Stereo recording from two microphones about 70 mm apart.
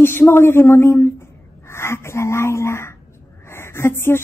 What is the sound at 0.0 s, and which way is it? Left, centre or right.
Speech, left.